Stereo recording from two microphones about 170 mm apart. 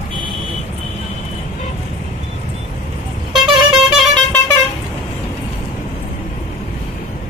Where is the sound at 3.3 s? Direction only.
25° right (ahead or behind).